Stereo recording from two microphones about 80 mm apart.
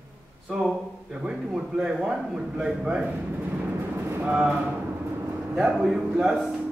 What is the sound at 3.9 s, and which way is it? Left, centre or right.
Speech, right.